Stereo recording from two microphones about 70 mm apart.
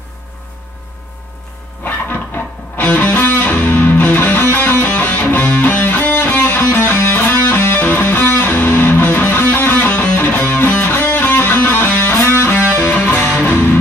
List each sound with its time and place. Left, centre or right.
1.9 s music: left